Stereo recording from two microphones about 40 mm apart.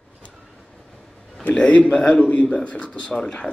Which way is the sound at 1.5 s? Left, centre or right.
Left.